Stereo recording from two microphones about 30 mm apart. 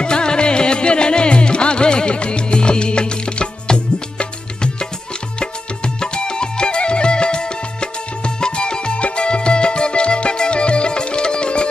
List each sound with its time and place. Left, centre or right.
0.0 s music: left
5.9 s music: left